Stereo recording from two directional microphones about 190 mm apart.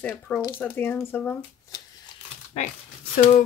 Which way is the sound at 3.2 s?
40° left (ahead or behind).